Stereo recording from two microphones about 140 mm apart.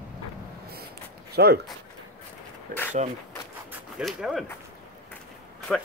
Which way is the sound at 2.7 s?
75° right (ahead or behind).